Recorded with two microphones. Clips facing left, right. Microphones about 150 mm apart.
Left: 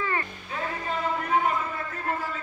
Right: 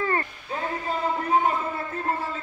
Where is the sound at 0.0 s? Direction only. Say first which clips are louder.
Right 3 dB; 40° right (ahead or behind).